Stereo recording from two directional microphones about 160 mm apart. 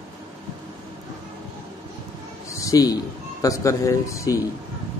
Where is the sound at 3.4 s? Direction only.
20° left (ahead or behind).